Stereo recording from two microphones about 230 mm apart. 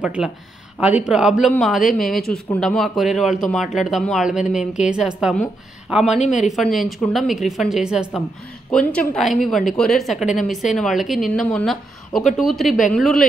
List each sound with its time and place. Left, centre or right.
0.0 s a man's voice: centre
6.0 s speech: left
6.5 s a man's voice: centre